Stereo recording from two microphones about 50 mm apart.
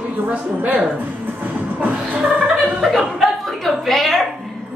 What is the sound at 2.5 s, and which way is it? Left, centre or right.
Chuckle, centre.